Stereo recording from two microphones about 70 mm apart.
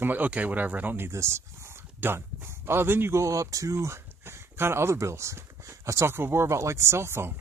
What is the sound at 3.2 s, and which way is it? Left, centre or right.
Speech, right.